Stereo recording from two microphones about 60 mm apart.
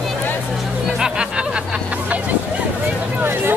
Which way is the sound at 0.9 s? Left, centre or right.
Centre.